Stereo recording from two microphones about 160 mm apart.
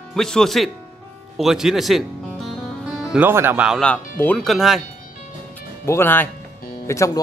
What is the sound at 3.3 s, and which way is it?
Speech, 15° right (ahead or behind).